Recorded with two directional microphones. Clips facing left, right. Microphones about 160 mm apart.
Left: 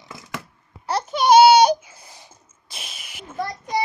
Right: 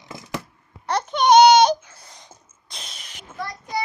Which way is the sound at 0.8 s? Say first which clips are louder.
Even; 5° left (ahead or behind).